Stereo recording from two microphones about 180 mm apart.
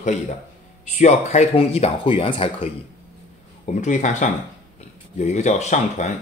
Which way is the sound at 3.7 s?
40° left (ahead or behind).